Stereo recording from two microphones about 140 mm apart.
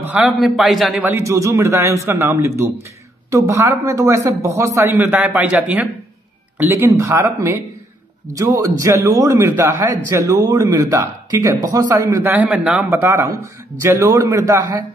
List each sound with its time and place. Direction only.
0.1 s a man's voice: 5° right (ahead or behind)
1.0 s a man's voice: 20° right (ahead or behind)
12.9 s a man's voice: 20° right (ahead or behind)